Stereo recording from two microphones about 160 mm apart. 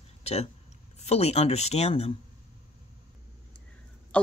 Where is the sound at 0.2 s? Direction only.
40° left (ahead or behind).